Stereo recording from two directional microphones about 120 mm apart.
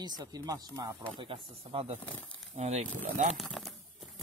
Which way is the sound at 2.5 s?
70° right (ahead or behind).